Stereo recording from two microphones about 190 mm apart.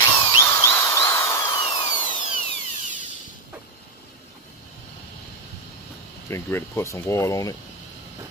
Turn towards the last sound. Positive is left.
turn(degrees=15)  # may be behind; listen again after turning